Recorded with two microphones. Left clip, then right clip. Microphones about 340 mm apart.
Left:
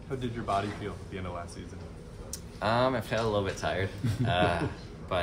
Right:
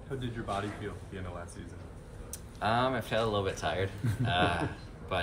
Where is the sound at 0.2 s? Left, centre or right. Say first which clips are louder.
Left 6 dB; left.